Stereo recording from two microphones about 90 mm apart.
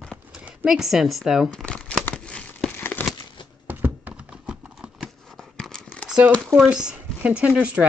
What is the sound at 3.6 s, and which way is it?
Clip-clop, 20° right (ahead or behind).